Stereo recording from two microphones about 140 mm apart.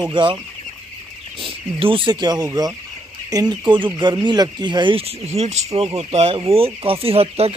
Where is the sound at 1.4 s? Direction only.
40° right (ahead or behind).